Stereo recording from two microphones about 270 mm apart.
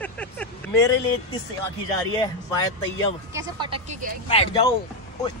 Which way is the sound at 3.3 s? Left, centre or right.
Centre.